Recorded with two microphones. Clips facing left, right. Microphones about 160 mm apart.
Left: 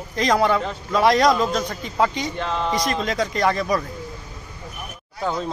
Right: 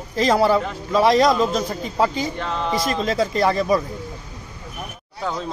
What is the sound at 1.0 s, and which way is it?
Speech, centre (ahead or behind).